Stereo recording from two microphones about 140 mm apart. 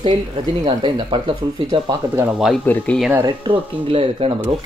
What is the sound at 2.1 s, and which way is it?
Speech, 5° right (ahead or behind).